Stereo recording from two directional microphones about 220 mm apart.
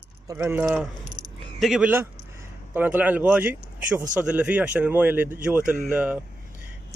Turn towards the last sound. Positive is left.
turn(degrees=-5)  # may be behind; listen again after turning